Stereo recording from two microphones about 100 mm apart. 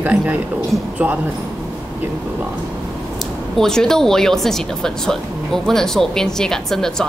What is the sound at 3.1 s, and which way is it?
A woman's voice, 5° left (ahead or behind).